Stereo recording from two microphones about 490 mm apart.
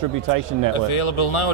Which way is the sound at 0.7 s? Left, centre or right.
Left.